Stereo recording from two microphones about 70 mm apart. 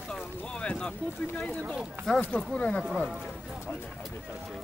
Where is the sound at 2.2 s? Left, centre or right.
Left.